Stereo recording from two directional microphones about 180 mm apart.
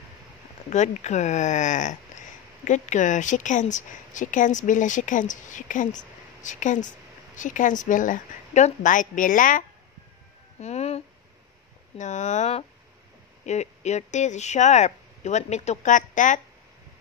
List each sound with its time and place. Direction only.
0.7 s speech: 40° left (ahead or behind)
10.6 s speech: 35° left (ahead or behind)
12.0 s speech: 40° left (ahead or behind)